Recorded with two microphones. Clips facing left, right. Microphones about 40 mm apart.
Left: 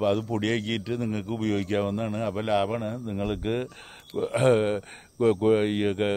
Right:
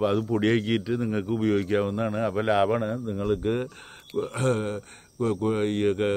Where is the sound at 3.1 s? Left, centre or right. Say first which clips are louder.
Right 2 dB; left.